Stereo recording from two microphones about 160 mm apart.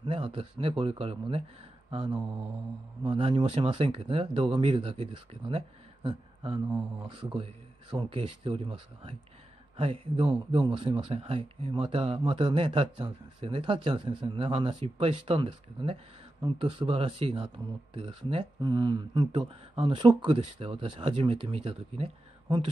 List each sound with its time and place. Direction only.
0.0 s speech: 30° right (ahead or behind)
1.9 s mantra: 30° right (ahead or behind)
3.1 s speech: 35° right (ahead or behind)